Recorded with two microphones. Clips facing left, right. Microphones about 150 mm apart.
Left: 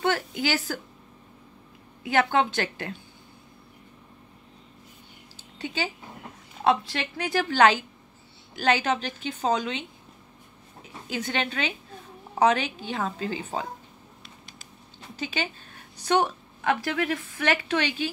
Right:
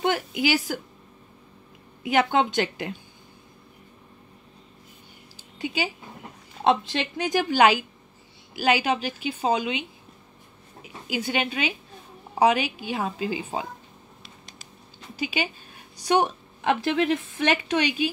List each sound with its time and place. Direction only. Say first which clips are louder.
0.0 s a woman's voice: right 2 dB; 15° right (ahead or behind)
2.0 s a woman's voice: right 1 dB; 20° right (ahead or behind)
5.6 s a woman's voice: right 2 dB; 10° right (ahead or behind)
15.1 s a woman's voice: right 3 dB; 10° right (ahead or behind)